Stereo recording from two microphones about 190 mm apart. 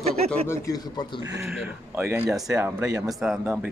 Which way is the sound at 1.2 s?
20° right (ahead or behind).